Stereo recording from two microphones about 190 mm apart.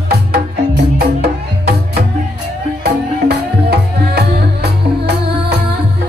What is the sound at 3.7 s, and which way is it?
Music, 60° right (ahead or behind).